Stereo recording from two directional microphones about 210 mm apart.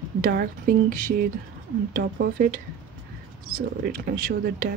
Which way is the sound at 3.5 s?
45° right (ahead or behind).